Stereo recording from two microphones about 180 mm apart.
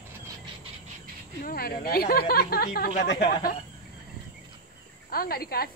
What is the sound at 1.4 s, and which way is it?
Speech, 55° left (ahead or behind).